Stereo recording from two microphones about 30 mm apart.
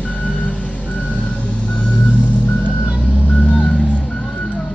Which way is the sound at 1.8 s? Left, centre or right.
Left.